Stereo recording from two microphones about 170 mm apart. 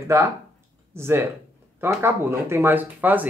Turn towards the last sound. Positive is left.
turn(degrees=-10)  # may be behind; listen again after turning